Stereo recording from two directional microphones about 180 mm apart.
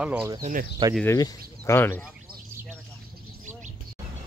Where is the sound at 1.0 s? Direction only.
15° left (ahead or behind).